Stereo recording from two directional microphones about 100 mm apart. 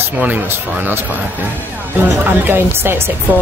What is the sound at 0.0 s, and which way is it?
Speech, 20° right (ahead or behind).